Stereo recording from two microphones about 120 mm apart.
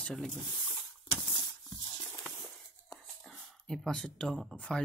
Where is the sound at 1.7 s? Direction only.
45° left (ahead or behind).